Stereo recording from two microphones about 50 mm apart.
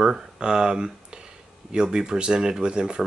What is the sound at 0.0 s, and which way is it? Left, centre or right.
Speech, centre.